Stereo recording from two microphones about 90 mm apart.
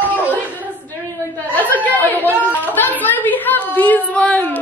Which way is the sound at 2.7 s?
20° left (ahead or behind).